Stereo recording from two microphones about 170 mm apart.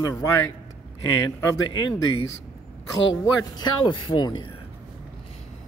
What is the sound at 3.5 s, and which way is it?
Speech, 25° left (ahead or behind).